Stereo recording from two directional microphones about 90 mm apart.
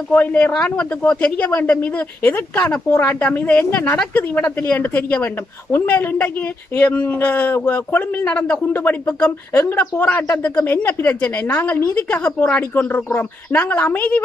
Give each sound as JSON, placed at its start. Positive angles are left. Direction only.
{"t": 0.1, "sound": "a woman's voice", "side_deg": 15}
{"t": 9.5, "sound": "a woman's voice", "side_deg": 30}